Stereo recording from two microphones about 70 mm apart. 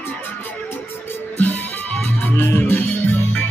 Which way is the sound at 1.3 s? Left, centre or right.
Left.